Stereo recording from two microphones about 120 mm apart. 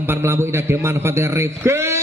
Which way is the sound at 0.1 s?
20° right (ahead or behind).